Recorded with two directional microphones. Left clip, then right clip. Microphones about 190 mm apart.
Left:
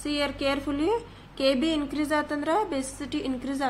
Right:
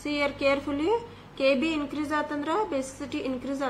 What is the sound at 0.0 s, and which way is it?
A woman's voice, 25° left (ahead or behind).